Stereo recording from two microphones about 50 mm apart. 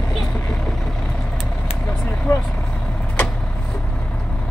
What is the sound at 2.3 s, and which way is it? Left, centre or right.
Speech, left.